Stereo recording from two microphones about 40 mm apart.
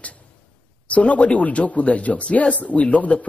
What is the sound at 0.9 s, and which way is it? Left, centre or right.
A man's voice, left.